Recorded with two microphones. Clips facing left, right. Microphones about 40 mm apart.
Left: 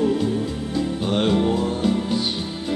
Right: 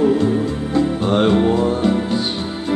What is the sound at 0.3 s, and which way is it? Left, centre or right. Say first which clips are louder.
Music: right 6 dB; right.